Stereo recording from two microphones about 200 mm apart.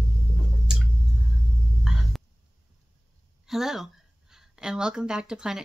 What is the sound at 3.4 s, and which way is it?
A woman's voice, centre (ahead or behind).